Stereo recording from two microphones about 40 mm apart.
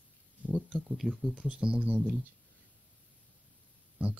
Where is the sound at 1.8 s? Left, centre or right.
Right.